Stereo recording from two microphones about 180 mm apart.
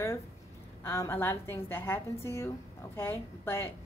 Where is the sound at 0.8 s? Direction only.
15° left (ahead or behind).